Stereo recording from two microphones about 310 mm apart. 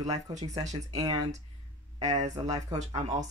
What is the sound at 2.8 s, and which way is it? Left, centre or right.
Speech, right.